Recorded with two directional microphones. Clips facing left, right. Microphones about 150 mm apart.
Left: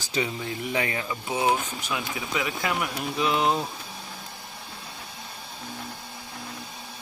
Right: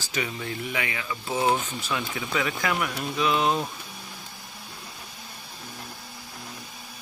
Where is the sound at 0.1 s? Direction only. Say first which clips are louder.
Left 2 dB; 25° left (ahead or behind).